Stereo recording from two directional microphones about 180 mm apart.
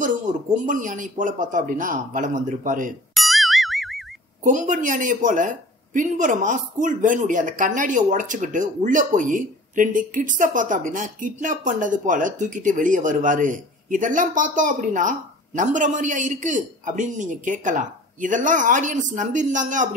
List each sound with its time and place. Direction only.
0.0 s a woman's voice: 45° right (ahead or behind)
3.2 s boing: centre (ahead or behind)
4.4 s a woman's voice: 45° right (ahead or behind)